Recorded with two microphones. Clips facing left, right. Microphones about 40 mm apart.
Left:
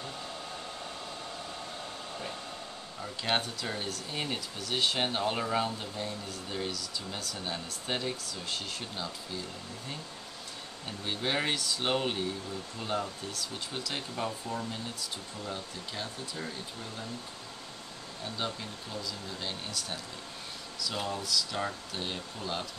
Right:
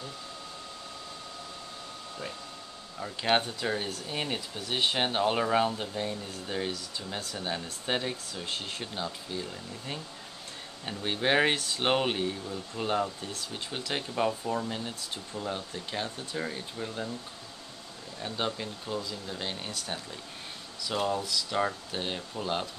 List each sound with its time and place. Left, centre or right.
3.0 s speech: centre
10.9 s speech: right
18.2 s speech: right
20.9 s speech: centre
21.2 s speech: right